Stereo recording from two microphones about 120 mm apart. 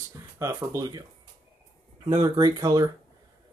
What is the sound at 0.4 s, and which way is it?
Speech, 25° right (ahead or behind).